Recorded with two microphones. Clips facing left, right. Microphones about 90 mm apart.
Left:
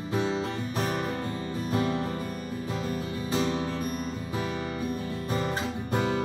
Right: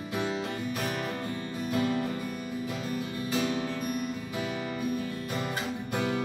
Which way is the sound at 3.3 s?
35° left (ahead or behind).